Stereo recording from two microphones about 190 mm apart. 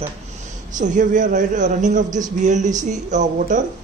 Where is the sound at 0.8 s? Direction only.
40° right (ahead or behind).